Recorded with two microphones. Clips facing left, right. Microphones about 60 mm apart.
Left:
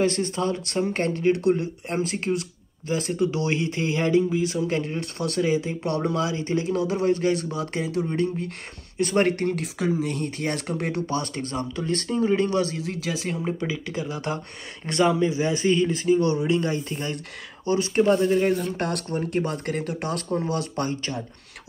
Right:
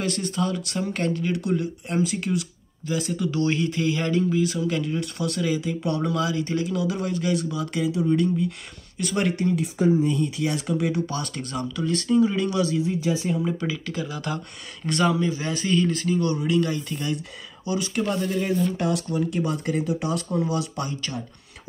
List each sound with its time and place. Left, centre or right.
0.0 s speech: left
9.3 s speech: left
9.8 s speech: left
11.1 s speech: left
12.8 s speech: left
13.7 s speech: left
18.8 s speech: left
20.2 s speech: left